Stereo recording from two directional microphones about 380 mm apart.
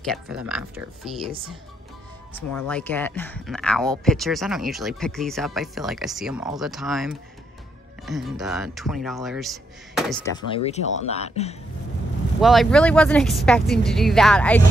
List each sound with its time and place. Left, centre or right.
0.0 s speech: centre
2.7 s speech: centre
10.5 s speech: centre
12.4 s speech: centre